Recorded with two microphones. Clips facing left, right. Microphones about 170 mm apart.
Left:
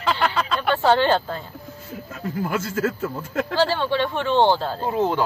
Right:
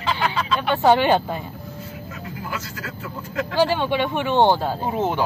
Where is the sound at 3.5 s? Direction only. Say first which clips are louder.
Right 2 dB; 15° right (ahead or behind).